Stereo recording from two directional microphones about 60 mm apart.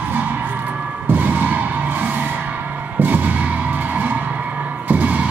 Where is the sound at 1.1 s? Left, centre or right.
Right.